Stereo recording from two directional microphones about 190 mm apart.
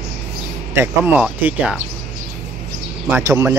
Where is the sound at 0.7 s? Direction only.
10° right (ahead or behind).